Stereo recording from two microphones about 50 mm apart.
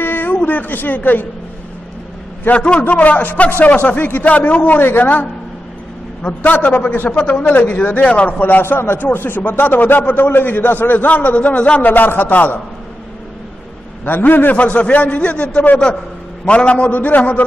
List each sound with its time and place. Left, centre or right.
0.0 s a sound: left
0.5 s speech: left
2.5 s a man's voice: left
7.1 s speech: left
11.8 s speech: left
14.0 s speech: left
14.7 s a man's voice: left